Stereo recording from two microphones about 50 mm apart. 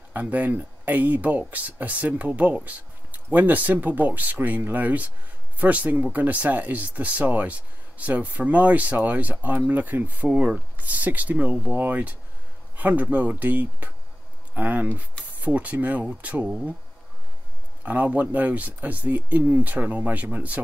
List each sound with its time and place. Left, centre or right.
0.1 s speech: right
10.3 s speech: right
10.8 s speech: right
17.8 s speech: right